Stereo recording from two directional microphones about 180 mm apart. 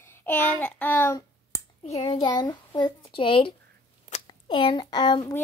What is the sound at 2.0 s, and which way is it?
A child's voice, 25° left (ahead or behind).